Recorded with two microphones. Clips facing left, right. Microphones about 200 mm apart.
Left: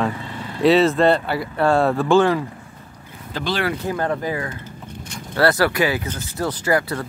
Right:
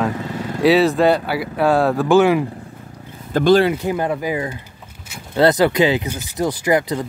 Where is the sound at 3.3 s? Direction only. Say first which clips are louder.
Right 12 dB; 50° right (ahead or behind).